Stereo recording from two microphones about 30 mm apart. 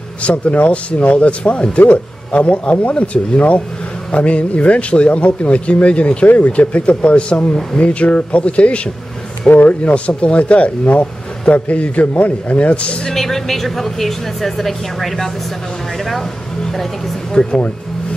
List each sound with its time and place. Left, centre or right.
0.2 s speech: left
9.5 s speech: left
13.1 s a woman's voice: centre
17.3 s speech: left